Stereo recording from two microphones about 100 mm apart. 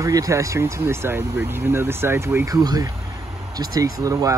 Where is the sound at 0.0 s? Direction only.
35° right (ahead or behind).